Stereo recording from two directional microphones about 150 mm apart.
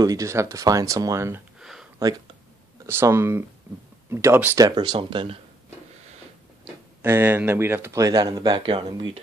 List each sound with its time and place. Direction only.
0.0 s speech: 20° right (ahead or behind)
1.6 s a sound: 5° right (ahead or behind)
2.9 s speech: 15° right (ahead or behind)
4.6 s speech: 30° right (ahead or behind)
7.0 s speech: 15° right (ahead or behind); by 9.2 s 35° right (ahead or behind)